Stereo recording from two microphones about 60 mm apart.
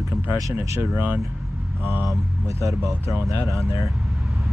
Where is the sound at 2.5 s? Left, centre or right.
Right.